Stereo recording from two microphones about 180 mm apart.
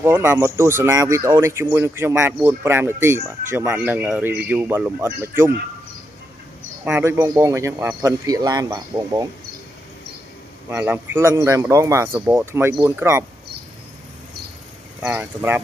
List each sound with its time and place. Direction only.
0.0 s speech: 10° right (ahead or behind)
6.8 s speech: 10° right (ahead or behind)
10.7 s speech: 10° right (ahead or behind)
15.0 s speech: 10° right (ahead or behind)